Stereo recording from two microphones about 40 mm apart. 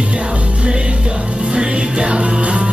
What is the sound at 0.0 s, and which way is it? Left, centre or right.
Music, right.